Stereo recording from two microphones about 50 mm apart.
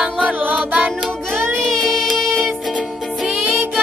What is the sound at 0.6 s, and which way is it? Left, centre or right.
Music, right.